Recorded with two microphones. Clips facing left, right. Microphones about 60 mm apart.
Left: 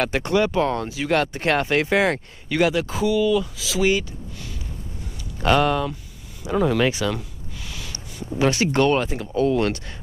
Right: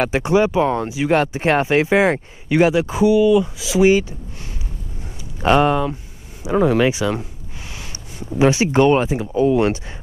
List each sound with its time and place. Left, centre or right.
0.0 s speech: centre
5.4 s speech: right
6.8 s speech: centre
7.1 s gasp: right
8.3 s speech: centre